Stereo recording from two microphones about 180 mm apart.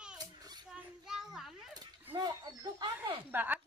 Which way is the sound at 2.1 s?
20° right (ahead or behind).